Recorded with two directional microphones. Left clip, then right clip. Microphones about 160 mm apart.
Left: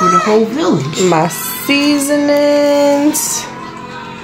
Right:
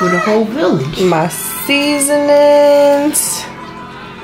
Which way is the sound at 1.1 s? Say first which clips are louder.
Left 2 dB; 20° left (ahead or behind).